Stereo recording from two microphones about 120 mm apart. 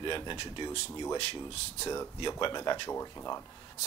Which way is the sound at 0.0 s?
40° left (ahead or behind).